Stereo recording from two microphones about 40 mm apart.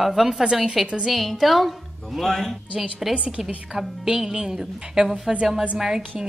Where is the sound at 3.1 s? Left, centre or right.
Right.